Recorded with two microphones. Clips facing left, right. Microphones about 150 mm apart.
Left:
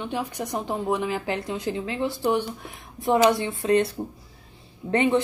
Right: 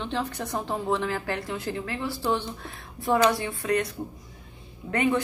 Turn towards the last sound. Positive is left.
turn(degrees=25)  # may be behind; listen again after turning